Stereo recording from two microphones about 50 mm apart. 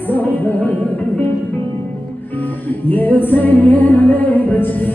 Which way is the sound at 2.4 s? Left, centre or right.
Left.